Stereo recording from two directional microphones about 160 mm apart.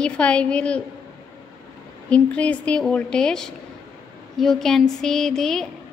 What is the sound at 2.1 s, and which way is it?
Speech, 10° left (ahead or behind).